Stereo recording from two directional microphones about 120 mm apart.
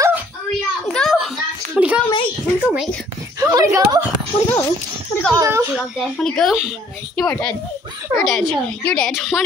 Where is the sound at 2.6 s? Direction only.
10° right (ahead or behind).